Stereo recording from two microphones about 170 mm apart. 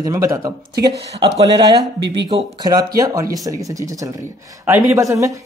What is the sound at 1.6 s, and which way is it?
Speech, 25° right (ahead or behind).